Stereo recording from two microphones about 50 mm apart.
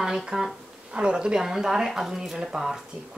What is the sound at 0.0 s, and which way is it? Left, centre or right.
Speech, centre.